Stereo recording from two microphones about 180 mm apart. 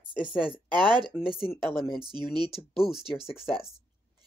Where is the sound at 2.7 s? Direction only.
Centre (ahead or behind).